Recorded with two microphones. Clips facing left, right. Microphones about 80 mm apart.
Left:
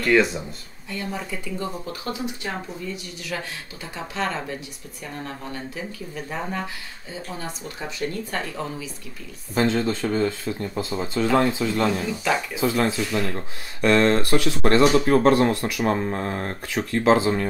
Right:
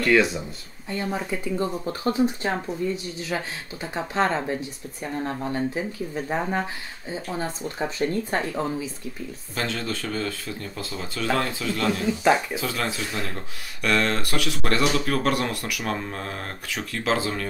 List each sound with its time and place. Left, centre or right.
0.0 s speech: centre
0.8 s speech: right
9.6 s speech: left